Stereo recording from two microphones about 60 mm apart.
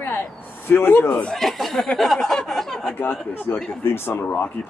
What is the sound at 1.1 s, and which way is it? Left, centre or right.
Speech, centre.